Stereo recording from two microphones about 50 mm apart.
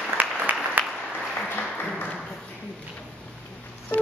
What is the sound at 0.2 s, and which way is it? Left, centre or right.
Applause, right.